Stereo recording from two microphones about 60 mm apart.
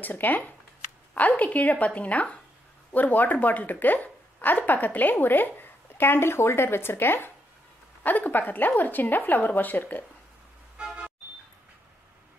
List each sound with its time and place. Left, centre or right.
0.0 s a woman's voice: left
10.8 s music: centre